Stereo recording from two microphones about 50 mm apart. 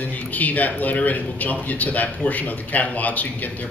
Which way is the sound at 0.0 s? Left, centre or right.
Left.